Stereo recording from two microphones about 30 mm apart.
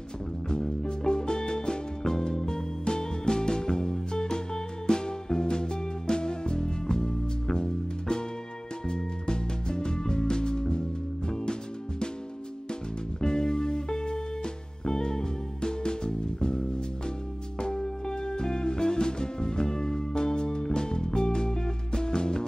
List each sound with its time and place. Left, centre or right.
0.5 s music: left
13.2 s music: left